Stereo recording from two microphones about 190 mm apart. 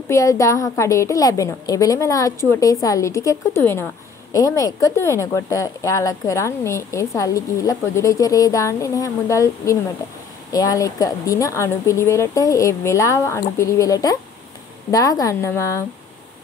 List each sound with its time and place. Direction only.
0.1 s a woman's voice: 15° left (ahead or behind)